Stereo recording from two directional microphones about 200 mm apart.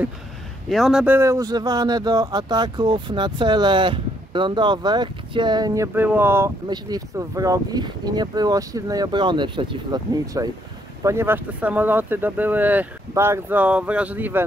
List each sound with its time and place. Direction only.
0.7 s speech: centre (ahead or behind)